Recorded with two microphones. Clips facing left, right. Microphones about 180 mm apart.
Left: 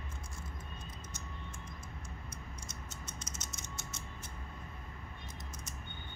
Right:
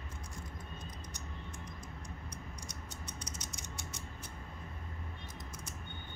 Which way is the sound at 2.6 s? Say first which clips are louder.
Right 1 dB; 15° right (ahead or behind).